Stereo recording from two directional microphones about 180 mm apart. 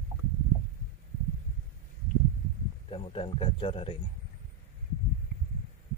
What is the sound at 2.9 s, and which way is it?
Speech, 30° left (ahead or behind).